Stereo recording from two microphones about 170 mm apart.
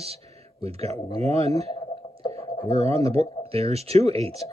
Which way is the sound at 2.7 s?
40° right (ahead or behind).